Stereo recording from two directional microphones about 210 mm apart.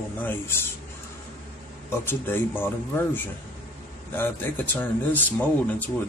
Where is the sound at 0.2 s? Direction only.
10° left (ahead or behind).